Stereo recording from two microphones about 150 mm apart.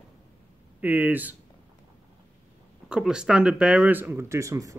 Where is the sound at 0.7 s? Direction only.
10° right (ahead or behind).